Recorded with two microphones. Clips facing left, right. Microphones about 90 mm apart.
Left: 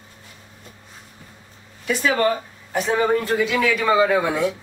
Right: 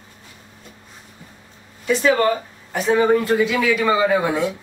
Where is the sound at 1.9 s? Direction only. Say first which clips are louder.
Right 4 dB; 30° right (ahead or behind).